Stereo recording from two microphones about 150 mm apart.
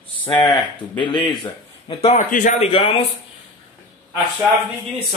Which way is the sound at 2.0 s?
60° left (ahead or behind).